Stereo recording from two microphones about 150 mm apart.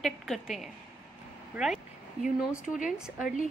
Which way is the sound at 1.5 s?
Centre (ahead or behind).